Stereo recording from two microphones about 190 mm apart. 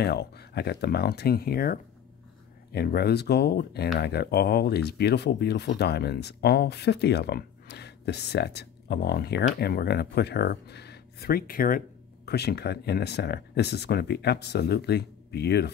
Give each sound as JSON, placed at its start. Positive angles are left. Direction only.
{"t": 0.0, "sound": "speech", "side_deg": 60}
{"t": 12.3, "sound": "speech", "side_deg": 60}